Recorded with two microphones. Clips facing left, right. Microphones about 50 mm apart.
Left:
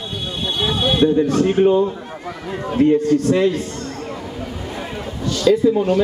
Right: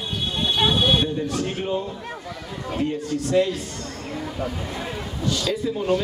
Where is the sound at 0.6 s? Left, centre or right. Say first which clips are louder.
Left 1 dB; centre.